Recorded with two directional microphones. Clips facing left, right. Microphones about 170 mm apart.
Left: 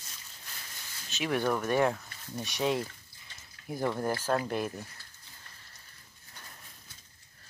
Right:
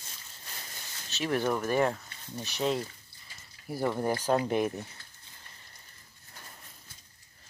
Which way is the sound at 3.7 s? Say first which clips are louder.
Right 2 dB; 5° right (ahead or behind).